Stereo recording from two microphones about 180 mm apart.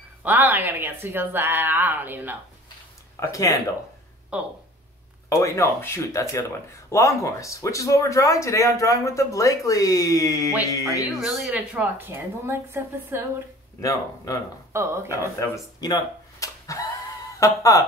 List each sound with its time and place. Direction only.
0.2 s speech: 10° right (ahead or behind)
3.2 s speech: 20° left (ahead or behind)
4.3 s speech: 5° right (ahead or behind)
5.3 s speech: 15° left (ahead or behind)
11.1 s speech: centre (ahead or behind)
13.7 s speech: 20° left (ahead or behind)
14.7 s speech: 15° right (ahead or behind)
15.8 s a sound: 20° left (ahead or behind)
17.4 s speech: 20° left (ahead or behind)